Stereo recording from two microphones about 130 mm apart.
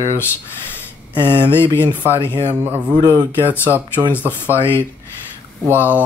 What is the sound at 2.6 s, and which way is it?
Speech, 15° right (ahead or behind).